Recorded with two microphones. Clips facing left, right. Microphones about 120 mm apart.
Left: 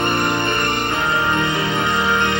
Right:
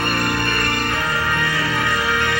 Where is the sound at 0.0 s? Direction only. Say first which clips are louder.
Left 2 dB; 20° left (ahead or behind).